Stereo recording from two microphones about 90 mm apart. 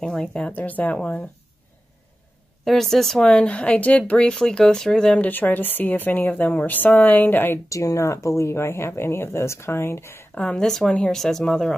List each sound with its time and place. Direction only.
0.0 s speech: 5° left (ahead or behind)
0.5 s speech: 20° left (ahead or behind)
2.6 s speech: centre (ahead or behind)
5.3 s speech: 20° left (ahead or behind)
7.7 s speech: 35° left (ahead or behind)
10.3 s speech: 10° left (ahead or behind)